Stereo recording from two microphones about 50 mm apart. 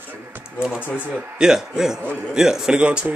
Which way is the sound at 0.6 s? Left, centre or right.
Centre.